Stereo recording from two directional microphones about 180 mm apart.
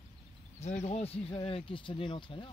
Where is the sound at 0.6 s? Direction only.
40° left (ahead or behind).